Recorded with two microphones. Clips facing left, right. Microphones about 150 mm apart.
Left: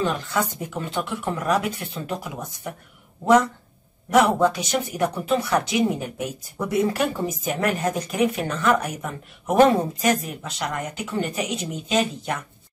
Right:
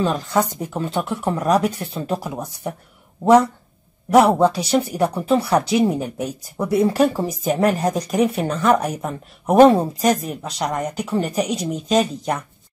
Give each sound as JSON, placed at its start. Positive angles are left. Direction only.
{"t": 0.0, "sound": "speech", "side_deg": -35}
{"t": 4.1, "sound": "speech", "side_deg": -35}